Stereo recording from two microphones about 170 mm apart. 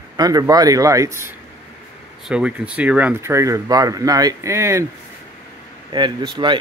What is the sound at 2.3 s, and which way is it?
Speech, 5° right (ahead or behind).